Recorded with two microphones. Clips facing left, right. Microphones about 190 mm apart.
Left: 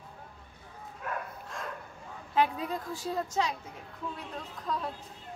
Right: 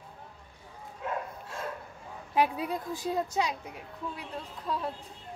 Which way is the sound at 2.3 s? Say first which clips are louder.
Right 1 dB; 10° right (ahead or behind).